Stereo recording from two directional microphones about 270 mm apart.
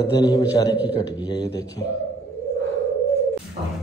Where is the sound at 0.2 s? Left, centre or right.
Centre.